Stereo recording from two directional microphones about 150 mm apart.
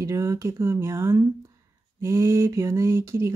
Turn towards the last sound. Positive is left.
turn(degrees=-15)  # may be behind; listen again after turning